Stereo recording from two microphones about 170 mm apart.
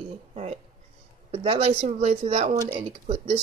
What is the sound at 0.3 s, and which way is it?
Speech, 40° right (ahead or behind).